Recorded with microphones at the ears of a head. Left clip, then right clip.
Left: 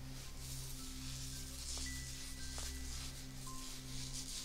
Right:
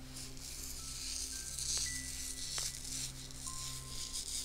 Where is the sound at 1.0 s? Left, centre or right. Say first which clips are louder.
Right 9 dB; right.